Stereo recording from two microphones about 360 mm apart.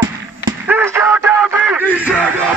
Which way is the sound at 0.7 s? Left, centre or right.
Centre.